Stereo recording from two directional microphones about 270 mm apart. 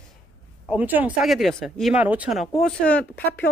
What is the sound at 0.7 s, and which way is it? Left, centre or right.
Speech, centre.